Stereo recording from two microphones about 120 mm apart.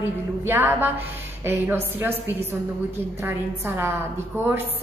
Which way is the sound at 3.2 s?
20° right (ahead or behind).